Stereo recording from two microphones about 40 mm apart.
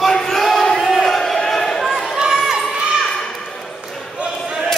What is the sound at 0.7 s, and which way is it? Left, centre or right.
Battle cry, centre.